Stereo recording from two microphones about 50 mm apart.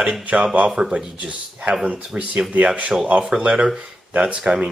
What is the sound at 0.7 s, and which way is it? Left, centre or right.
Speech, centre.